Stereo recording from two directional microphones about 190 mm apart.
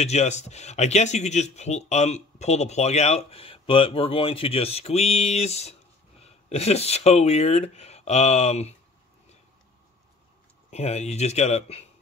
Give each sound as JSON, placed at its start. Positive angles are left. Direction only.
{"t": 0.0, "sound": "speech", "side_deg": 35}
{"t": 10.7, "sound": "speech", "side_deg": 35}